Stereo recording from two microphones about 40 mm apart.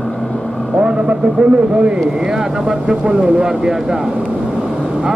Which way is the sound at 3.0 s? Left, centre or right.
Right.